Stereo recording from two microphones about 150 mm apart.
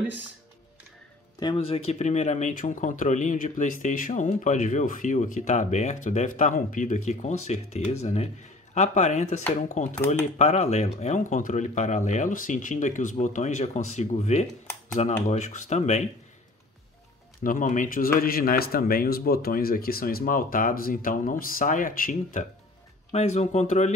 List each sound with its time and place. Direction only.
1.4 s speech: 35° left (ahead or behind); by 16.1 s 50° left (ahead or behind)
17.4 s a man's voice: 65° left (ahead or behind)
23.1 s speech: 45° left (ahead or behind)